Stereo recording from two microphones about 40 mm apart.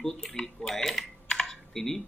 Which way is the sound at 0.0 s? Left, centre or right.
Centre.